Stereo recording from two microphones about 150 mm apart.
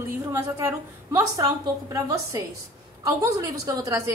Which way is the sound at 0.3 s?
15° right (ahead or behind).